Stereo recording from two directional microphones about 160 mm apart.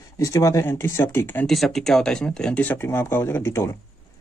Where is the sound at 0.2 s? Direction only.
20° left (ahead or behind).